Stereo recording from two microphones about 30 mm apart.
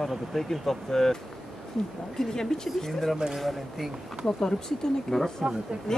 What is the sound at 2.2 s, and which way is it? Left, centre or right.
Speech, centre.